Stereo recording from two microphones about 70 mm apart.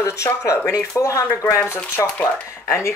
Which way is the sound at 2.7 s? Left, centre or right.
Left.